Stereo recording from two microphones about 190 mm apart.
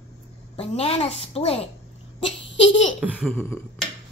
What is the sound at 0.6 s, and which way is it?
A woman's voice, 30° left (ahead or behind).